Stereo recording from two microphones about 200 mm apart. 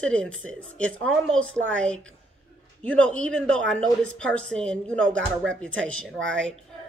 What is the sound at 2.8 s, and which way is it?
A woman's voice, 5° left (ahead or behind).